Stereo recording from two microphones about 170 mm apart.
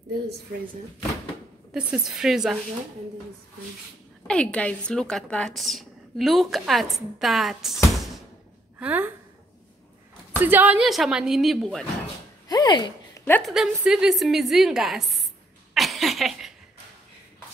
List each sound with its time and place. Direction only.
1.7 s a woman's voice: 5° right (ahead or behind)
4.3 s a woman's voice: 5° left (ahead or behind); by 9.1 s 10° right (ahead or behind)
10.4 s a woman's voice: 10° right (ahead or behind)
12.4 s a sound: 25° left (ahead or behind)
13.4 s a woman's voice: 5° right (ahead or behind)
15.7 s a sound: centre (ahead or behind)